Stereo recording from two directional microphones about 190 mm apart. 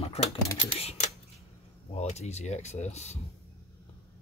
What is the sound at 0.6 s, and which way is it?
Speech, 30° left (ahead or behind).